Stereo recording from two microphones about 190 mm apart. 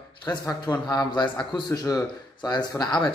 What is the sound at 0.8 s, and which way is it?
Speech, 25° left (ahead or behind).